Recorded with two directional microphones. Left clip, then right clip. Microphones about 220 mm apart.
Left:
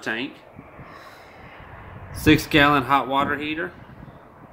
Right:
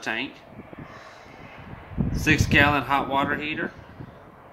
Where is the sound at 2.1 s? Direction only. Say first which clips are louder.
Left 3 dB; 30° left (ahead or behind).